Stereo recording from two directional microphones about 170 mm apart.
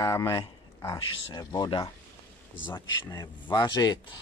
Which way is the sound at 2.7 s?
10° left (ahead or behind).